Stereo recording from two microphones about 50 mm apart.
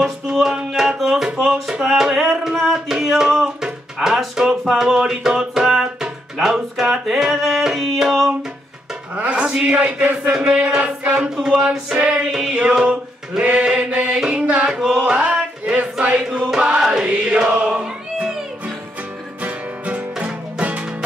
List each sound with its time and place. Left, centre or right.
0.0 s music: centre
2.7 s speech: centre
9.1 s speech: right
10.3 s music: centre
11.4 s speech: centre
12.3 s music: centre
12.5 s speech: right
14.4 s music: right
14.7 s music: centre
15.0 s chant: right
16.2 s music: centre
19.4 s music: right